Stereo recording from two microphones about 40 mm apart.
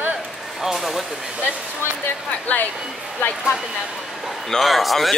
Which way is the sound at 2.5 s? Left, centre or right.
Left.